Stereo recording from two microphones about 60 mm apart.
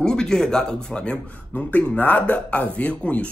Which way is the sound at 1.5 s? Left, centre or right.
Left.